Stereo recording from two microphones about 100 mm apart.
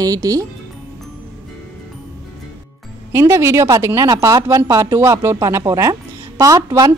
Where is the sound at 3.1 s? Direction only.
25° right (ahead or behind).